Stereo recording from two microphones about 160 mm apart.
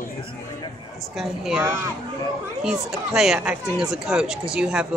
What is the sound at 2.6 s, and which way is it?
Speech, 5° right (ahead or behind).